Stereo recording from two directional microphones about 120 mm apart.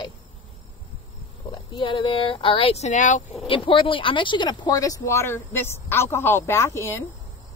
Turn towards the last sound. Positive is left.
turn(degrees=25)  # may be behind; listen again after turning